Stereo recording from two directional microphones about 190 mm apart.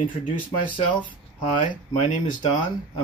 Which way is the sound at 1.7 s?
40° left (ahead or behind).